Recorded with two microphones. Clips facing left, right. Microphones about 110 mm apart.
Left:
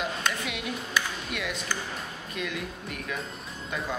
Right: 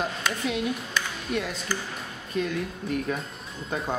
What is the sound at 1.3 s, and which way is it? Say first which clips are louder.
Speech: right 6 dB; 35° right (ahead or behind).